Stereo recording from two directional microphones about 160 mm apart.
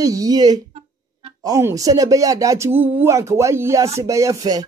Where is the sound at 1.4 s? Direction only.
20° right (ahead or behind).